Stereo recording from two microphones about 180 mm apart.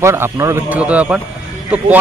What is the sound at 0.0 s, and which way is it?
Speech, 15° right (ahead or behind).